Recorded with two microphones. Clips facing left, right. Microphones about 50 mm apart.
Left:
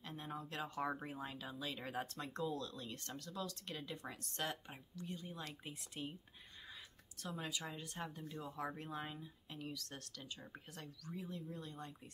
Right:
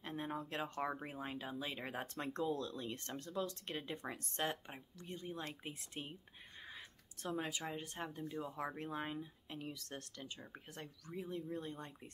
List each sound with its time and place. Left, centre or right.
0.0 s speech: right
7.2 s speech: right
8.5 s speech: right